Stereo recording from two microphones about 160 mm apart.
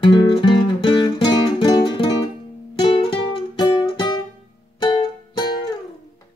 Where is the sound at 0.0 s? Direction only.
30° left (ahead or behind).